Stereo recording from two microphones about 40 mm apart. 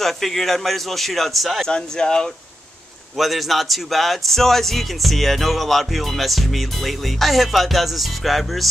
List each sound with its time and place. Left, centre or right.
0.0 s speech: centre
1.7 s speech: centre
3.2 s speech: centre